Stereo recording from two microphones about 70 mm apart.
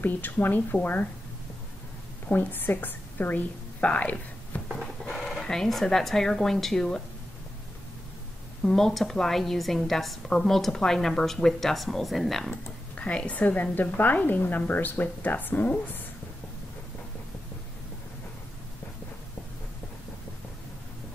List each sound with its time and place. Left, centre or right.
0.0 s a woman's voice: left
2.2 s a woman's voice: left
5.1 s speech: centre
8.6 s a woman's voice: centre
12.9 s a woman's voice: centre